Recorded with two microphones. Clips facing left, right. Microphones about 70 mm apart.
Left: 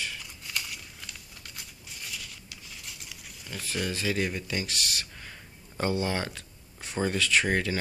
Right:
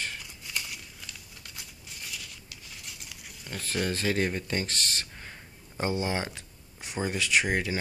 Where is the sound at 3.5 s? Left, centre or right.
Right.